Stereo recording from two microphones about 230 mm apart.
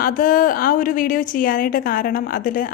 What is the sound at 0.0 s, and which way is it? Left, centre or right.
A woman's voice, left.